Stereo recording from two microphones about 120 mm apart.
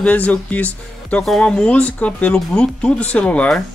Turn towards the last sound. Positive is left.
turn(degrees=10)  # may be behind; listen again after turning